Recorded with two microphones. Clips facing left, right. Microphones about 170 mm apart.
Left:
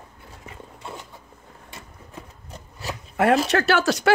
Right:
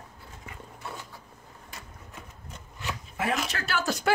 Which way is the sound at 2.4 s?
35° left (ahead or behind).